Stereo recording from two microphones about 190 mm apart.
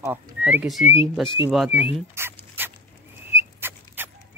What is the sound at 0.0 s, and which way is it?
Speech, 10° right (ahead or behind).